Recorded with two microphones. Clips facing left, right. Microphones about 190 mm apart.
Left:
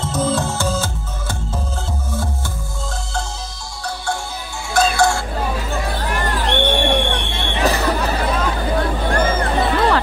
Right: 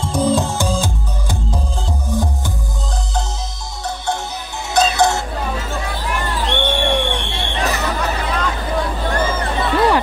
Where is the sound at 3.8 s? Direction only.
20° right (ahead or behind).